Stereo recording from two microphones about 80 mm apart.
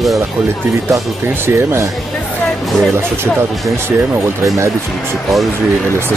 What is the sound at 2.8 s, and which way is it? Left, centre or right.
Speech, centre.